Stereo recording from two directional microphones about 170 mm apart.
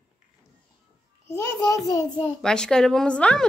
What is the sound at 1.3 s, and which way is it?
Speech, 15° left (ahead or behind).